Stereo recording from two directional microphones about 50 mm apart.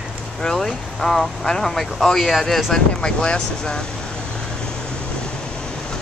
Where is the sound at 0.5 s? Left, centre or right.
Centre.